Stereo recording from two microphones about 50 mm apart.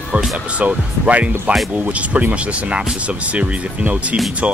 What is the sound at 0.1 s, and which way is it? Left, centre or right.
Speech, right.